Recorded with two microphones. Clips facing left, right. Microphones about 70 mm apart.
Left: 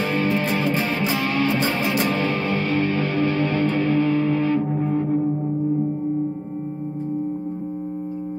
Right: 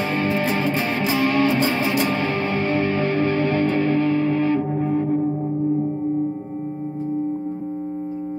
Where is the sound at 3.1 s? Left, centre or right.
Centre.